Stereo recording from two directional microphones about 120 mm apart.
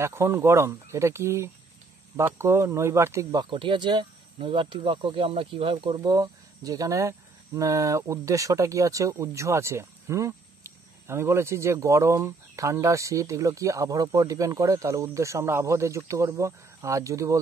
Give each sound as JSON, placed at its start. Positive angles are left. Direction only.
{"t": 0.0, "sound": "speech", "side_deg": -20}
{"t": 3.4, "sound": "speech", "side_deg": -45}
{"t": 5.9, "sound": "speech", "side_deg": -35}